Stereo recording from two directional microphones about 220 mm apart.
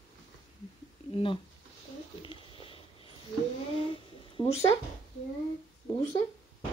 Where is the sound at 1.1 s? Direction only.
25° left (ahead or behind).